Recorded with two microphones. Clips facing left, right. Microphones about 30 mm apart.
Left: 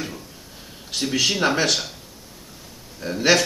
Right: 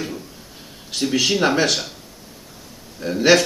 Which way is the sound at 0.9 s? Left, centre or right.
Centre.